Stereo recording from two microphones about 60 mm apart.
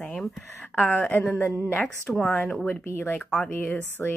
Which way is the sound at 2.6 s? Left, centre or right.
Left.